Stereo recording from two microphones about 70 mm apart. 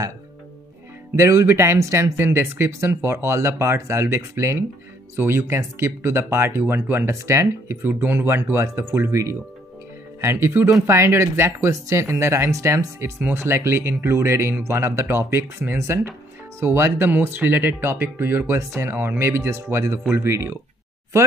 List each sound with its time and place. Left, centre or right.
1.1 s speech: right
13.2 s speech: right